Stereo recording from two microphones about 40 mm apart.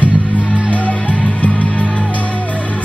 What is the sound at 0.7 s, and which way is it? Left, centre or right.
Music, left.